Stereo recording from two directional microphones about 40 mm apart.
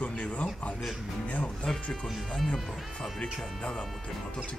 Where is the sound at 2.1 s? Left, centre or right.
Centre.